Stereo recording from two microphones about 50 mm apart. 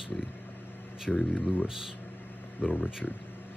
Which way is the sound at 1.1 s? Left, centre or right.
Centre.